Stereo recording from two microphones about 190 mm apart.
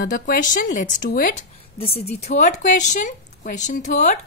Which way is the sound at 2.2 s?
40° left (ahead or behind).